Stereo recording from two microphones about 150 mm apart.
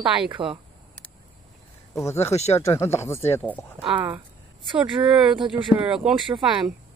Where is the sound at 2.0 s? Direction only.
15° left (ahead or behind).